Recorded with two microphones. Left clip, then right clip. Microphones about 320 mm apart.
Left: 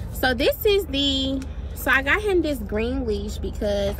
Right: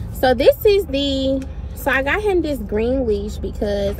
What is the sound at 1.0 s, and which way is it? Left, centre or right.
Speech, right.